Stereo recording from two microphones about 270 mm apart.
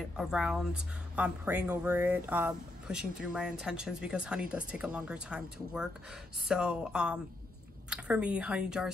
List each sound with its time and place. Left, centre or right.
0.0 s speech: centre